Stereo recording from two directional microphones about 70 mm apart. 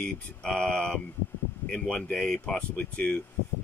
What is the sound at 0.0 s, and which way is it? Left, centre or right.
Speech, centre.